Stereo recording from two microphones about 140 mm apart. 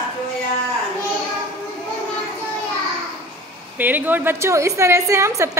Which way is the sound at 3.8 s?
10° right (ahead or behind).